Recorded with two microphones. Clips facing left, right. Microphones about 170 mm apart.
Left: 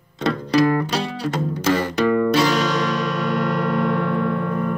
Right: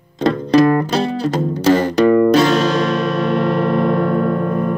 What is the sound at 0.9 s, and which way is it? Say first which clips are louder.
Music: right 6 dB; 35° right (ahead or behind).